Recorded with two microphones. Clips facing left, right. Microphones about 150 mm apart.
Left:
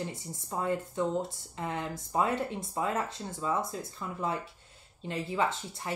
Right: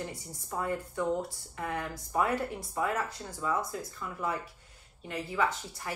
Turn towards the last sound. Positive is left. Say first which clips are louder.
# even
turn(degrees=25)  # may be behind; listen again after turning